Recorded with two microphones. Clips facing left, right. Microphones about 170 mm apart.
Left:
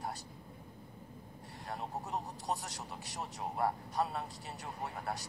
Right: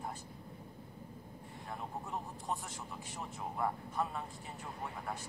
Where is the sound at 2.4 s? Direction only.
75° left (ahead or behind).